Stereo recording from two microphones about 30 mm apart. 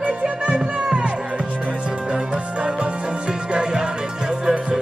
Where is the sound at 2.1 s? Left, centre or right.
Right.